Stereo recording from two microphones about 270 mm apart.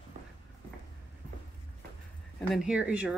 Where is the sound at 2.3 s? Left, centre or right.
Centre.